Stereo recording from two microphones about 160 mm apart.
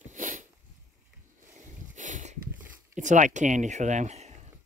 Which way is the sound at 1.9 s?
50° right (ahead or behind).